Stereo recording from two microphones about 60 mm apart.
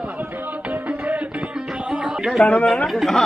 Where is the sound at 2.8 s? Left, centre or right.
Centre.